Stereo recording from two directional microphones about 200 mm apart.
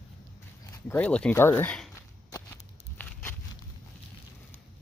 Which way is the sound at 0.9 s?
5° left (ahead or behind).